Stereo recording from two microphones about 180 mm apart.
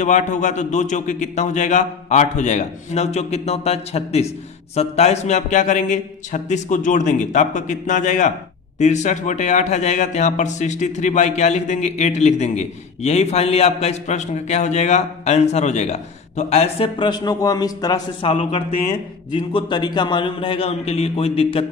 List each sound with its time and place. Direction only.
0.0 s a man's voice: 40° left (ahead or behind); by 18.3 s 20° left (ahead or behind)
18.3 s a man's voice: 35° left (ahead or behind)